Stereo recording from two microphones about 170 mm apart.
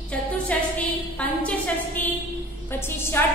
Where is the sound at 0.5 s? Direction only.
10° left (ahead or behind).